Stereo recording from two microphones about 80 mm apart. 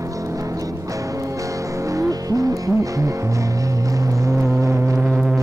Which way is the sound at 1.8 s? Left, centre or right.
Right.